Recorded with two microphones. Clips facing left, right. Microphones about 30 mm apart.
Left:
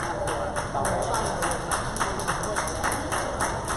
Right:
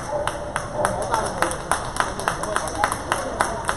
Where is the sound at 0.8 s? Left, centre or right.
Right.